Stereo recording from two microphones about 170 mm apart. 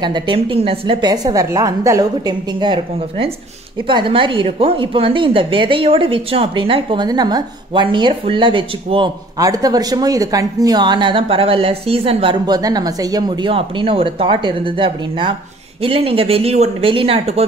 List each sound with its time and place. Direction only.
0.0 s speech: 30° right (ahead or behind)